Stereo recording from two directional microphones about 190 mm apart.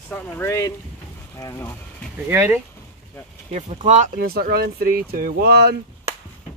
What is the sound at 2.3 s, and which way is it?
Speech, 15° right (ahead or behind).